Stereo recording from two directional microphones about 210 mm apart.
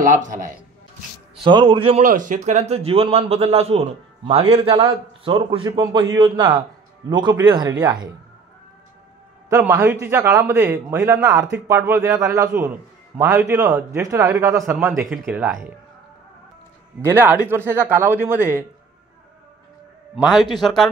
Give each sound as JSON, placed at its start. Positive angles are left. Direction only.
{"t": 0.0, "sound": "a man's voice", "side_deg": -40}
{"t": 1.4, "sound": "a man's voice", "side_deg": -25}
{"t": 2.0, "sound": "a man's voice", "side_deg": -40}
{"t": 9.5, "sound": "a man's voice", "side_deg": -10}
{"t": 17.0, "sound": "a man's voice", "side_deg": -10}
{"t": 20.2, "sound": "speech", "side_deg": 0}